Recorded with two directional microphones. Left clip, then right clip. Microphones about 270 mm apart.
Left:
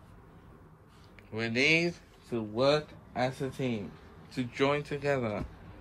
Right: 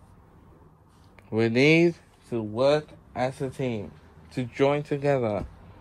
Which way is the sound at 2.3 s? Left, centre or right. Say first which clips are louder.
Right 5 dB; right.